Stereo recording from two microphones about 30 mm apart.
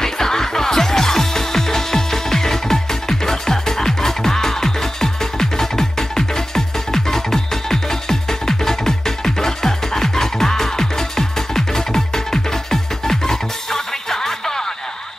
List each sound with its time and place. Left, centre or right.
0.0 s music: centre